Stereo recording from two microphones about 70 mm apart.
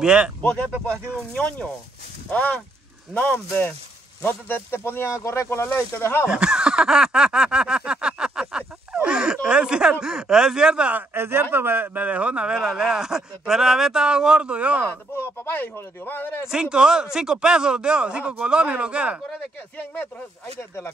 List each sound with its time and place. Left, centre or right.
0.0 s speech: centre
1.1 s speech: centre; by 6.2 s left
6.2 s a sound: centre
9.0 s speech: centre
11.0 s a man's voice: right
14.9 s speech: left
16.4 s speech: centre
20.5 s speech: left